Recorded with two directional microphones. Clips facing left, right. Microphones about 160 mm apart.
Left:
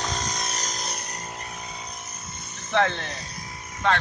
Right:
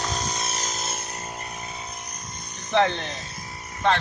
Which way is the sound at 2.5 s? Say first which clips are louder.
Right 2 dB; 20° right (ahead or behind).